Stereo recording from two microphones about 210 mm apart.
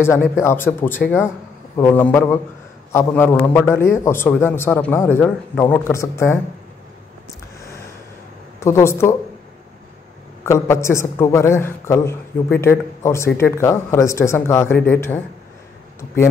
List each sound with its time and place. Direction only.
0.0 s a man's voice: 10° left (ahead or behind)
8.5 s a man's voice: 15° left (ahead or behind)
10.4 s a man's voice: 15° left (ahead or behind)